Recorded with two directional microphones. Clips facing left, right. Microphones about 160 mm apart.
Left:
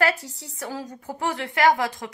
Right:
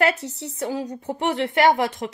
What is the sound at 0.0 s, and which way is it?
A woman's voice, 20° right (ahead or behind).